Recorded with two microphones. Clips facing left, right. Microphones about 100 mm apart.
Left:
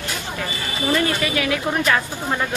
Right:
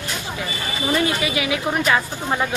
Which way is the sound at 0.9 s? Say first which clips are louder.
Even; 10° right (ahead or behind).